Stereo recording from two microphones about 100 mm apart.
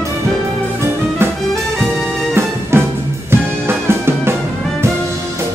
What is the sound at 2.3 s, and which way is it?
Music, 25° right (ahead or behind).